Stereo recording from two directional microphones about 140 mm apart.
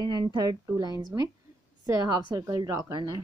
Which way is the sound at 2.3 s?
25° right (ahead or behind).